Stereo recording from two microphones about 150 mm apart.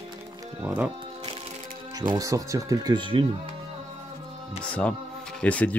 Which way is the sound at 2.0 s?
25° right (ahead or behind).